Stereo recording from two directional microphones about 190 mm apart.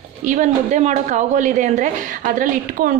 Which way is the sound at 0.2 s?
40° right (ahead or behind).